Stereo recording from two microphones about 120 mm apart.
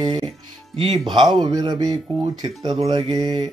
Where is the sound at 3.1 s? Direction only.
40° right (ahead or behind).